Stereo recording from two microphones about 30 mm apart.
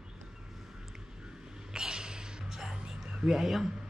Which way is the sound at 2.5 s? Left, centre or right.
Centre.